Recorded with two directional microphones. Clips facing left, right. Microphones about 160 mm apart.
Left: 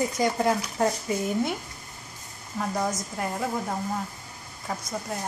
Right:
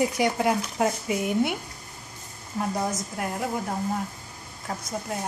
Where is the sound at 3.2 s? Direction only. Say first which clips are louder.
Even; 5° right (ahead or behind).